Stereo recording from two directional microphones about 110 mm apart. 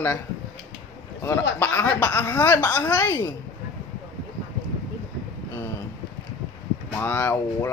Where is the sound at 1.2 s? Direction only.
20° left (ahead or behind).